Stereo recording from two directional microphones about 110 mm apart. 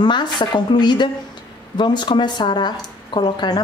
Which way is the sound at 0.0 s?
45° left (ahead or behind).